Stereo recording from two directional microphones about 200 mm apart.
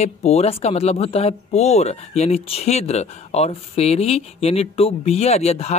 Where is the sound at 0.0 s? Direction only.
30° left (ahead or behind).